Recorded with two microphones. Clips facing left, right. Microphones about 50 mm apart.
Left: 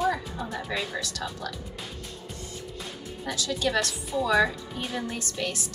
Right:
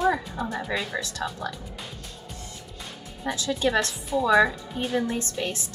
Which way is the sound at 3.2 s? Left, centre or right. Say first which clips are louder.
Right 3 dB; right.